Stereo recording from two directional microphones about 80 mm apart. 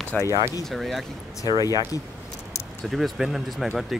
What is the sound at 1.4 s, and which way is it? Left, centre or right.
Speech, left.